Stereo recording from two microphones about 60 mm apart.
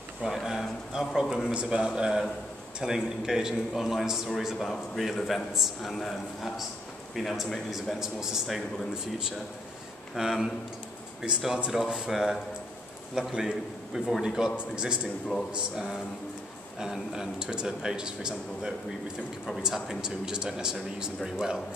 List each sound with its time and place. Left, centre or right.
0.2 s a man's voice: centre
7.7 s speech: centre
10.1 s a man's voice: centre
16.8 s speech: centre